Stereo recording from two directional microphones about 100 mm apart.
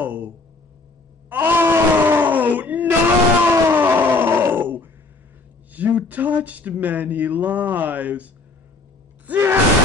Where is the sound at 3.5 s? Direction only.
20° right (ahead or behind).